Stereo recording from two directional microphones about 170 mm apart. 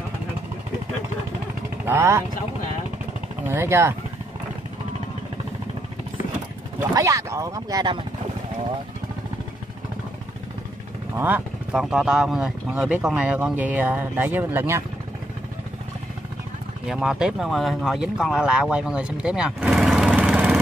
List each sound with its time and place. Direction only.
1.9 s speech: 15° right (ahead or behind)
3.4 s speech: 15° right (ahead or behind)
6.9 s speech: 20° right (ahead or behind)
11.1 s speech: 10° right (ahead or behind)
16.8 s speech: 5° right (ahead or behind)